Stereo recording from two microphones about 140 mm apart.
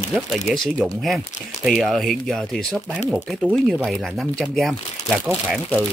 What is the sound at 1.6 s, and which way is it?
Speech, centre (ahead or behind).